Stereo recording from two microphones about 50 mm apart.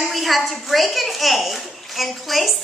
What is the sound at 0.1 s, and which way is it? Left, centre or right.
A woman's voice, centre.